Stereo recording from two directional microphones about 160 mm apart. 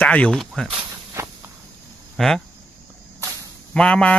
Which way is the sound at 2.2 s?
Centre (ahead or behind).